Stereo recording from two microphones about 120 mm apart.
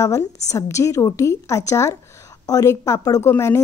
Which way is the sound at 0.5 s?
25° left (ahead or behind).